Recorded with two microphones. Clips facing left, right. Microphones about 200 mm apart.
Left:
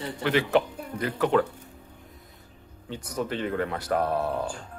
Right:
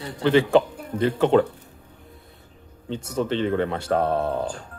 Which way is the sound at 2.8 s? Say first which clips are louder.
Right 5 dB; 25° right (ahead or behind).